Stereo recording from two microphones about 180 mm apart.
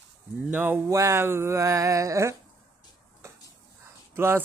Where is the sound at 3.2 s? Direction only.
15° right (ahead or behind).